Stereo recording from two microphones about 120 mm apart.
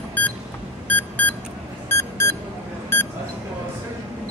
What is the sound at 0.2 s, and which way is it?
Beep, 15° left (ahead or behind).